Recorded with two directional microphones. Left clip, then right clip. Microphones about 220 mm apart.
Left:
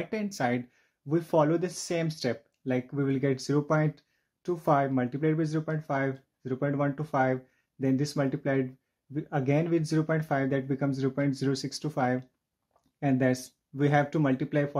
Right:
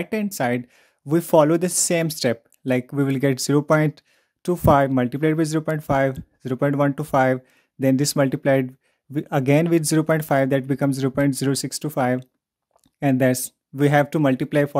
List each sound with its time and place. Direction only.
0.0 s speech: 40° right (ahead or behind)